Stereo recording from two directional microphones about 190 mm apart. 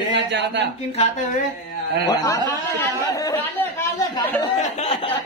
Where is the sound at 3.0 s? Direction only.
20° left (ahead or behind).